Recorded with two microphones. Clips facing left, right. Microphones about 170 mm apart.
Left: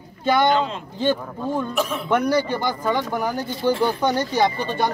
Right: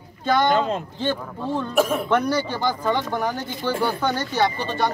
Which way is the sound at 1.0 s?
10° left (ahead or behind).